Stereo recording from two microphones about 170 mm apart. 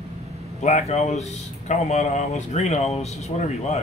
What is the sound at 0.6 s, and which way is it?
Speech, 40° left (ahead or behind).